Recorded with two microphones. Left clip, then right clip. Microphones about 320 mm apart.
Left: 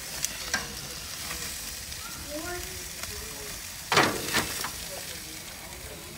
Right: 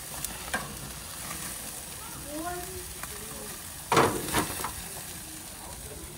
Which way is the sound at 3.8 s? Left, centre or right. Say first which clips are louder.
Even; right.